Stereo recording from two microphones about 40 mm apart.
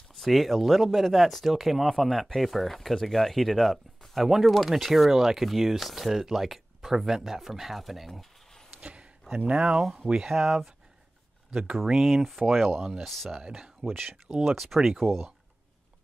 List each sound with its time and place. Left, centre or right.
0.1 s speech: centre
8.1 s a sound: centre
8.8 s a sound: right
9.3 s speech: right
10.2 s speech: centre
12.1 s speech: centre
13.4 s speech: centre
13.8 s speech: centre